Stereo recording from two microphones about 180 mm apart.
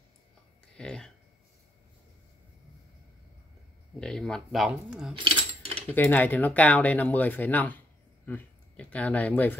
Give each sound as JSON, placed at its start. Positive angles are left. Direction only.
{"t": 0.7, "sound": "a sound", "side_deg": 5}
{"t": 4.0, "sound": "speech", "side_deg": 5}
{"t": 5.1, "sound": "cutlery", "side_deg": -30}
{"t": 5.9, "sound": "speech", "side_deg": 10}